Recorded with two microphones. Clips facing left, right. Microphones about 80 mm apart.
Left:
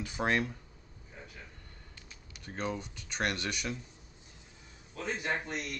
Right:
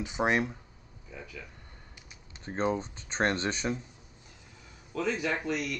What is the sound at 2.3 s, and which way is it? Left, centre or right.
Speech, right.